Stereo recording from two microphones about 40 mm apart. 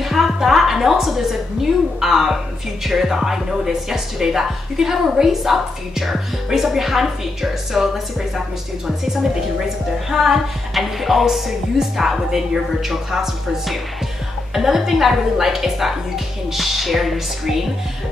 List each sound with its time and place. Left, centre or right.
0.0 s a woman's voice: centre